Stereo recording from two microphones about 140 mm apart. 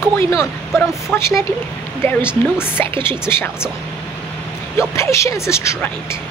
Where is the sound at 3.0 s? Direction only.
15° left (ahead or behind).